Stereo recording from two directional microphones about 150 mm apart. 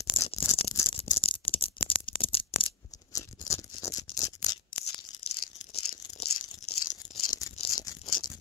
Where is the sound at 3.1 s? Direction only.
20° left (ahead or behind).